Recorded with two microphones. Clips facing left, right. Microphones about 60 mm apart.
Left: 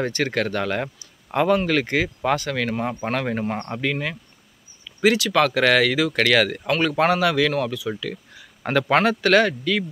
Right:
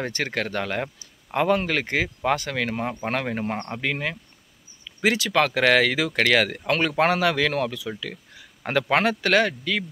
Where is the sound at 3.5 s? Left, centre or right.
Centre.